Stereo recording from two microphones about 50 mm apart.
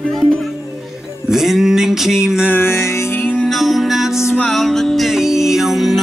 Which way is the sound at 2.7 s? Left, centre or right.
Left.